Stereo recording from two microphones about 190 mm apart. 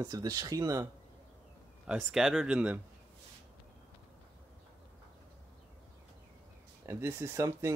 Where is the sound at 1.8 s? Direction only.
5° right (ahead or behind).